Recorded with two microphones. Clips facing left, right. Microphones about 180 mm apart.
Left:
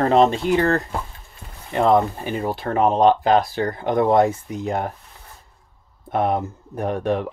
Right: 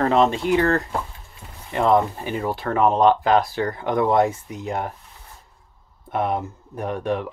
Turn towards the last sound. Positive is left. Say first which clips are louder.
# left 3 dB
turn(degrees=35)  # may be behind; listen again after turning